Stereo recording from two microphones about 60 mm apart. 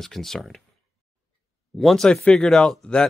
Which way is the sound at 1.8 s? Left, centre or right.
Centre.